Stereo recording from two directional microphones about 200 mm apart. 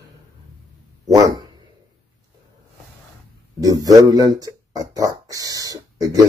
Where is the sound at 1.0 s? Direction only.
20° right (ahead or behind).